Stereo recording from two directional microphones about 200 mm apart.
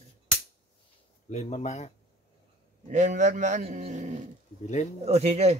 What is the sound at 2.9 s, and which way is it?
Speech, 35° right (ahead or behind).